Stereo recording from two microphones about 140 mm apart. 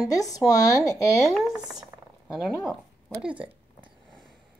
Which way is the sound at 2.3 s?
Centre (ahead or behind).